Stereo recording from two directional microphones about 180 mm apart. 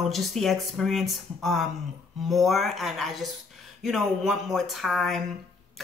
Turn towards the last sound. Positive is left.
turn(degrees=0)  # may be behind; listen again after turning